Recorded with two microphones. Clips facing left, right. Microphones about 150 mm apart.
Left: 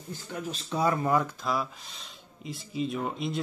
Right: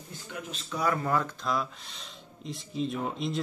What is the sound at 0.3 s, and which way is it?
Speech, 35° left (ahead or behind).